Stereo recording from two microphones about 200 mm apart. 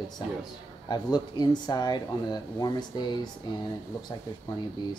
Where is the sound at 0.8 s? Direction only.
20° left (ahead or behind).